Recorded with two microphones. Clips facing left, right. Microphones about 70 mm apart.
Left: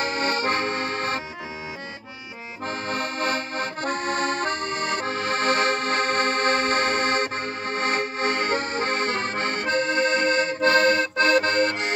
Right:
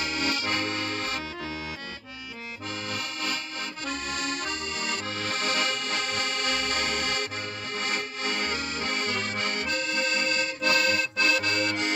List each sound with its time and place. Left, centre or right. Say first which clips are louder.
0.0 s accordion: left 5 dB; left
2.9 s accordion: left 8 dB; left